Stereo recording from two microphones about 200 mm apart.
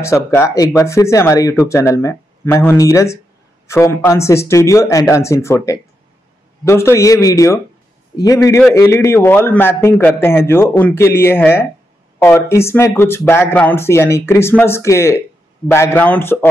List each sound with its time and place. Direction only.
0.0 s a man's voice: 15° left (ahead or behind)